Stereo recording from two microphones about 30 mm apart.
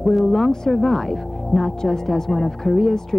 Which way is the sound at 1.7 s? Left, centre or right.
Centre.